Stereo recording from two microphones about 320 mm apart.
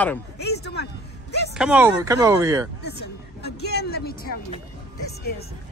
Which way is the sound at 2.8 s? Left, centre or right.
Left.